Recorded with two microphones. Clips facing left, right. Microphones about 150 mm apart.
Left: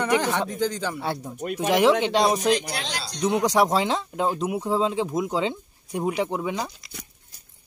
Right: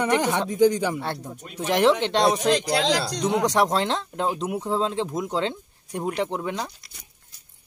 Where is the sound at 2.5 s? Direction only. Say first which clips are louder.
Right 4 dB; 90° right.